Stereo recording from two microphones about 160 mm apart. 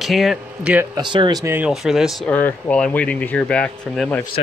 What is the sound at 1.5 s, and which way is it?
Speech, 5° right (ahead or behind).